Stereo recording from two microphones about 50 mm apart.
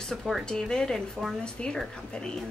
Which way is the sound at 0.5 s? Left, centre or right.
Centre.